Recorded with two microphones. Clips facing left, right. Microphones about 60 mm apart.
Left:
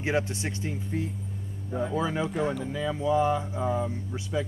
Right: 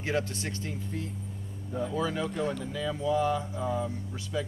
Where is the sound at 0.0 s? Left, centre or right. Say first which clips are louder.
Left 3 dB; centre.